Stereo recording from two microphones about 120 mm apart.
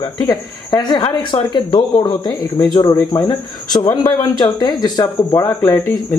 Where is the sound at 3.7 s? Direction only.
35° left (ahead or behind).